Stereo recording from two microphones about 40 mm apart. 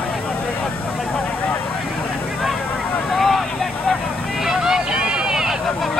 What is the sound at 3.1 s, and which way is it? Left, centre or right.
Vehicle, centre.